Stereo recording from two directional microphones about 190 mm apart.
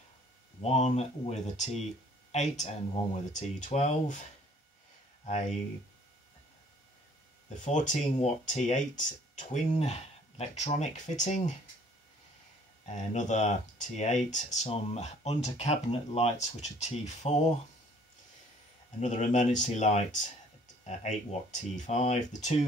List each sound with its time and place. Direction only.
0.6 s speech: 35° left (ahead or behind)
5.2 s speech: 40° left (ahead or behind)
7.6 s speech: 40° left (ahead or behind)
12.8 s speech: 40° left (ahead or behind)
18.9 s speech: 40° left (ahead or behind)